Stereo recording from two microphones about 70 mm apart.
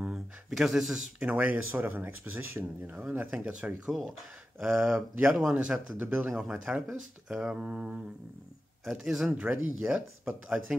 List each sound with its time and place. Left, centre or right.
0.0 s a sound: centre
1.2 s speech: right
3.8 s speech: centre
4.6 s speech: right
5.5 s speech: centre
6.3 s speech: centre
9.0 s speech: centre
9.4 s speech: right